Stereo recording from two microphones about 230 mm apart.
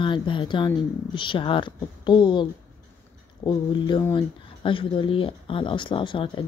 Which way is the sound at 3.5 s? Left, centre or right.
Centre.